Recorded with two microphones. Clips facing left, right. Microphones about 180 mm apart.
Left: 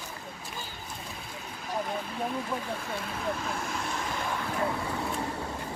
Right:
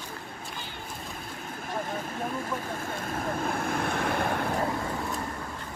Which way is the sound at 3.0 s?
50° right (ahead or behind).